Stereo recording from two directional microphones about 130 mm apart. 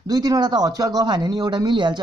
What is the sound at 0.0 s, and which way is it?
Speech, 30° right (ahead or behind).